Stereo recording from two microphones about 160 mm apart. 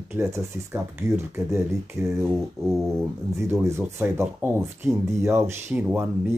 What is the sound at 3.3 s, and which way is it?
Speech, 15° right (ahead or behind).